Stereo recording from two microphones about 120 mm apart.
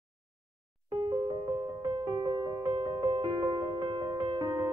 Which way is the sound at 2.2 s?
45° right (ahead or behind).